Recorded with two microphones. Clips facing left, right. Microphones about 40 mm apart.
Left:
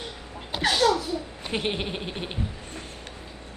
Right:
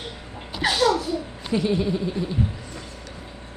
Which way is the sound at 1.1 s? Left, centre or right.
Left.